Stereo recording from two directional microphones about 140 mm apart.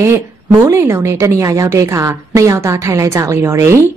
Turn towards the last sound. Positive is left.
turn(degrees=-20)  # may be behind; listen again after turning